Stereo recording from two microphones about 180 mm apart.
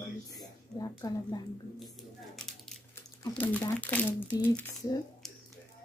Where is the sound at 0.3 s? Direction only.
20° left (ahead or behind).